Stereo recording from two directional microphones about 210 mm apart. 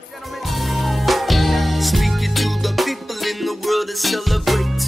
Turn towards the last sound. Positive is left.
turn(degrees=0)  # may be behind; listen again after turning